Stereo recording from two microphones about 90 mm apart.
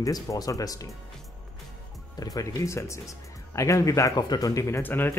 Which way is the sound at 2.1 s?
40° left (ahead or behind).